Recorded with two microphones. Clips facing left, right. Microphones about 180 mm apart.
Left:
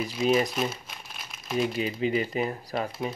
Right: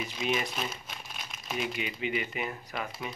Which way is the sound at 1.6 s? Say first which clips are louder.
Left 8 dB; 35° left (ahead or behind).